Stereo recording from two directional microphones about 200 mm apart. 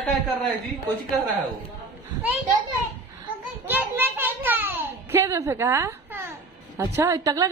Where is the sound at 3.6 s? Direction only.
10° right (ahead or behind).